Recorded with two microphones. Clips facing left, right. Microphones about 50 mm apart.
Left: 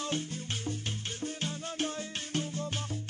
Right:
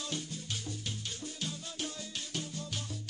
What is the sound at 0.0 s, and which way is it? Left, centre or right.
Music, left.